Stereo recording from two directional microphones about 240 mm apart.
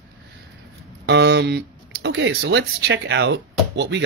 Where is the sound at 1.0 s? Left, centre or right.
Right.